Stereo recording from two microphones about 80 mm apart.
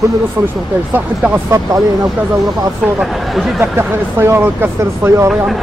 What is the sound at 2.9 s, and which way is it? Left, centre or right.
Speech, centre.